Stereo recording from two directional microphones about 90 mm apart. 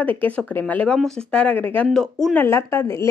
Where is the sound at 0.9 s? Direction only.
5° left (ahead or behind).